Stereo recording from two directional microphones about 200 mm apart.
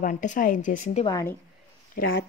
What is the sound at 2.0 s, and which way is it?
Speech, 45° left (ahead or behind).